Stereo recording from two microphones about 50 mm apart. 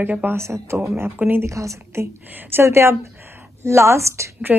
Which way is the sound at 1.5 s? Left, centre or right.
Right.